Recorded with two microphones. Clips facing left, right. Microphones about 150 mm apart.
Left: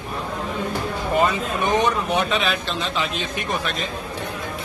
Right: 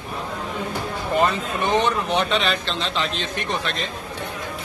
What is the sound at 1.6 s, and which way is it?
A man's voice, 10° left (ahead or behind).